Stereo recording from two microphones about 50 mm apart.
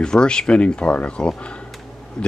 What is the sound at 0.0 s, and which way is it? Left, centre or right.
Speech, centre.